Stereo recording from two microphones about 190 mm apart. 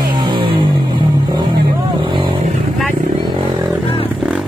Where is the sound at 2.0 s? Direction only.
25° right (ahead or behind).